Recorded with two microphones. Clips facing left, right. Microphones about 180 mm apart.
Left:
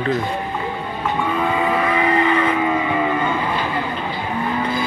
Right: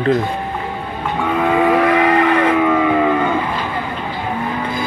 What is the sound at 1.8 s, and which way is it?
Vehicle, 75° right (ahead or behind).